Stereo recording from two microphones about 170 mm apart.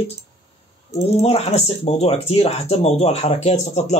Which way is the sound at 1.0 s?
35° left (ahead or behind).